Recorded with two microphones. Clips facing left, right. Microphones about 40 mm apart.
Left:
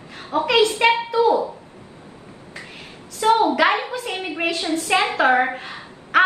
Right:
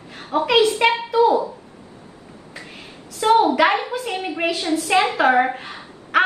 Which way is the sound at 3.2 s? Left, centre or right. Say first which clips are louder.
Right 1 dB; right.